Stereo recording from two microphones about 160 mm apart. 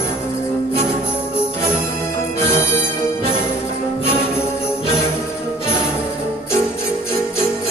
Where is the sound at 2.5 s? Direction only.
15° left (ahead or behind).